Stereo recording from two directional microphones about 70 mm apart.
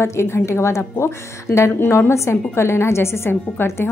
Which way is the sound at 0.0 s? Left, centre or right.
Left.